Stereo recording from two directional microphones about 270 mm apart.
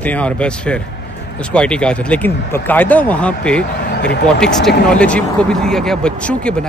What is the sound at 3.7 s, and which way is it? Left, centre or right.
Vehicle, left.